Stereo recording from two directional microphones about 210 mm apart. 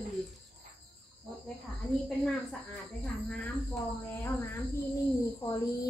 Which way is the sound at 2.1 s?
Centre (ahead or behind).